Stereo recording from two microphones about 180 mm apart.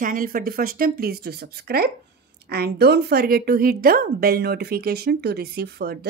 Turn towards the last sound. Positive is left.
turn(degrees=-60)  # may be behind; listen again after turning